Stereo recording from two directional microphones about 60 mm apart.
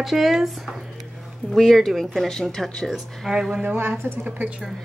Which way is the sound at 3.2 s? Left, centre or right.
Centre.